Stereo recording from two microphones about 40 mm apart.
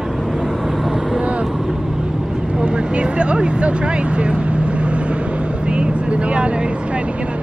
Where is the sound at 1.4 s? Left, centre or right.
Centre.